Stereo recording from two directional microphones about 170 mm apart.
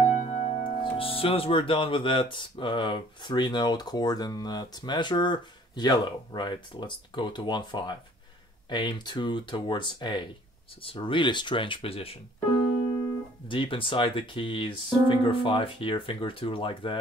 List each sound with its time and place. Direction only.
0.2 s speech: 40° left (ahead or behind)
13.5 s speech: 30° left (ahead or behind)